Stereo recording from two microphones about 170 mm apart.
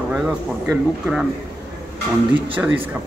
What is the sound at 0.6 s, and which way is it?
Speech, centre (ahead or behind).